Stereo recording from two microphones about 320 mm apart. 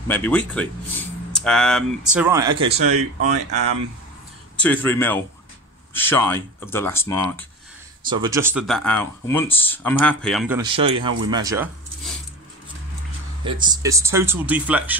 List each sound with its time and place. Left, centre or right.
0.1 s speech: centre
2.9 s speech: right
4.6 s speech: centre
8.1 s speech: centre
10.7 s speech: centre
13.4 s speech: centre